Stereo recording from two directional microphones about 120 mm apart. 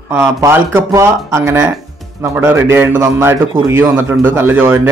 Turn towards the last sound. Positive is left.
turn(degrees=-20)  # may be behind; listen again after turning